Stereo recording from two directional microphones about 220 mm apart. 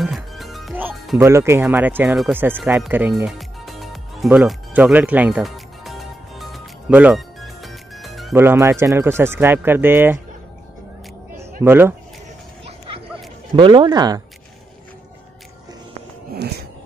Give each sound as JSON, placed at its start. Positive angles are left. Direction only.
{"t": 0.0, "sound": "music", "side_deg": 0}
{"t": 2.8, "sound": "speech", "side_deg": -10}
{"t": 3.3, "sound": "music", "side_deg": 0}
{"t": 11.6, "sound": "speech", "side_deg": -10}
{"t": 13.6, "sound": "speech", "side_deg": -20}